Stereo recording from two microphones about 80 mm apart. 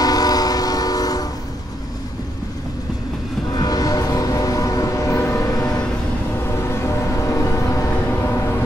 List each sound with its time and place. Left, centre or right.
0.0 s train: left
3.4 s train: left
5.5 s vehicle: left
6.4 s train: left